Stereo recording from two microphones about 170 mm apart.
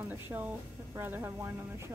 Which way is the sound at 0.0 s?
10° right (ahead or behind).